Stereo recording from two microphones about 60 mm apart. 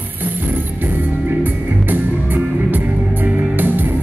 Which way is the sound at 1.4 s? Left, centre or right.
Right.